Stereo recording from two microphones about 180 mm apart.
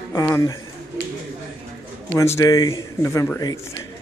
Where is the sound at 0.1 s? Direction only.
20° left (ahead or behind).